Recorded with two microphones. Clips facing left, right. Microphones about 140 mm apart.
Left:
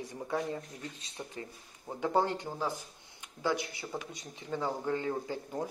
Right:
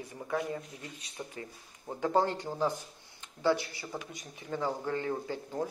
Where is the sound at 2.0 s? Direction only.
15° left (ahead or behind).